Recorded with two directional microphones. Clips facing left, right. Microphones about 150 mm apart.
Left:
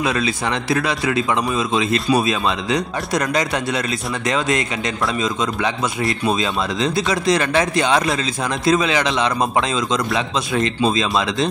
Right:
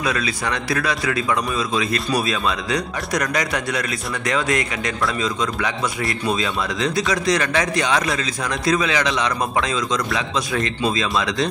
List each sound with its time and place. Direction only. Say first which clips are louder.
0.0 s a man's voice: left 3 dB; 25° left (ahead or behind)